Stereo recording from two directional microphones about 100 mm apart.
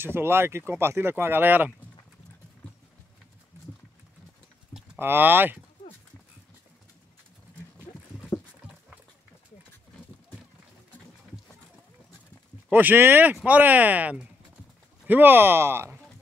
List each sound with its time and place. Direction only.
0.0 s speech: 25° right (ahead or behind)
4.9 s speech: 20° right (ahead or behind)
12.7 s speech: 20° right (ahead or behind)